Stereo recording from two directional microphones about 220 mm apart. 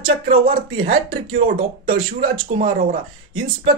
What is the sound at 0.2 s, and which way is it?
Speech, 40° right (ahead or behind).